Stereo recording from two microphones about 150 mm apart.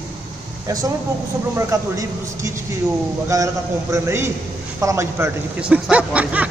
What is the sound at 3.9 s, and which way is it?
Speech, 20° right (ahead or behind).